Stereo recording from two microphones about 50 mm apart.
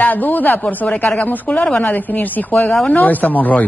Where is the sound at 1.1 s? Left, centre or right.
Left.